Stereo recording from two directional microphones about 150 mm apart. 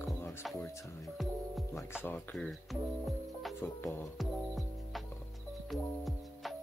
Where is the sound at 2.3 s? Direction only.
Centre (ahead or behind).